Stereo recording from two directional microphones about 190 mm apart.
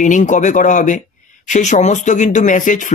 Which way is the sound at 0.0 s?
40° left (ahead or behind).